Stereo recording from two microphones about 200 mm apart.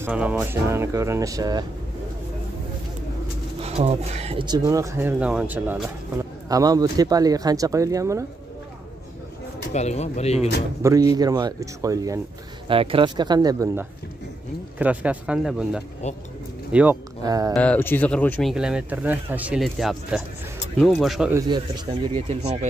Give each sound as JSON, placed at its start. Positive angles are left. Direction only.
{"t": 0.0, "sound": "speech", "side_deg": -5}
{"t": 3.6, "sound": "speech", "side_deg": -30}
{"t": 9.7, "sound": "speech", "side_deg": 35}
{"t": 10.8, "sound": "speech", "side_deg": -15}
{"t": 12.6, "sound": "speech", "side_deg": -25}
{"t": 14.8, "sound": "speech", "side_deg": -5}
{"t": 17.2, "sound": "speech", "side_deg": -20}
{"t": 17.6, "sound": "speech", "side_deg": 10}
{"t": 21.3, "sound": "speech", "side_deg": -20}